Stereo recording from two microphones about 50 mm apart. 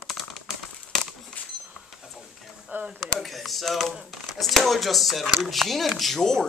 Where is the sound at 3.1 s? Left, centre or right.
Centre.